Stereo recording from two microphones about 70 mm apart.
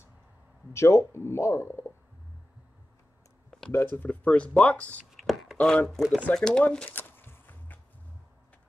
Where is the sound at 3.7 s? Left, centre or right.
Left.